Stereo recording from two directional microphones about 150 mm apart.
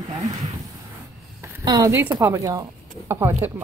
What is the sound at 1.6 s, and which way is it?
A woman's voice, 25° right (ahead or behind).